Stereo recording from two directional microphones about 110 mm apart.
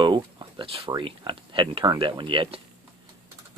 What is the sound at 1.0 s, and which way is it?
Speech, 50° right (ahead or behind).